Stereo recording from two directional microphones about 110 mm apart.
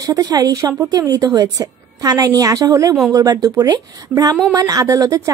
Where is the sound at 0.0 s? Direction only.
35° right (ahead or behind).